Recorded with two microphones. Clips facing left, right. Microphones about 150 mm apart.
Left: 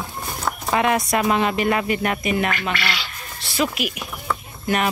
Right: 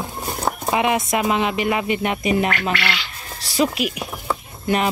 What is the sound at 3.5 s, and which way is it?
Speech, 30° right (ahead or behind).